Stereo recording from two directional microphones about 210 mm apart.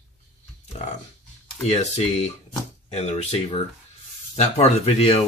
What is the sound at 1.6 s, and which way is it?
Speech, 30° left (ahead or behind).